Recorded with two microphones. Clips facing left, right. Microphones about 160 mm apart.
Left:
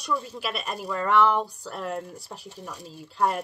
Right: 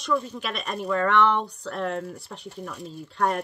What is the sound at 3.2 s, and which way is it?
Speech, 5° left (ahead or behind).